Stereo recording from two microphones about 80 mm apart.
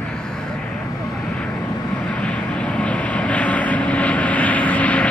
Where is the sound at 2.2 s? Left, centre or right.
Centre.